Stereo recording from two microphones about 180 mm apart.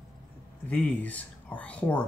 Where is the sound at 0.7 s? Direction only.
10° left (ahead or behind).